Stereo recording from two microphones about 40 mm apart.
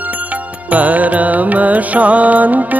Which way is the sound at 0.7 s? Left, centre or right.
Right.